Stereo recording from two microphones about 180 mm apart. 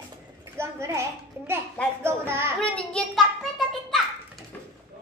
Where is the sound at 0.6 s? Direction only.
15° right (ahead or behind).